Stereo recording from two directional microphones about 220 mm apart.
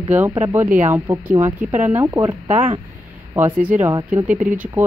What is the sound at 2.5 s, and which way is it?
Speech, 35° right (ahead or behind).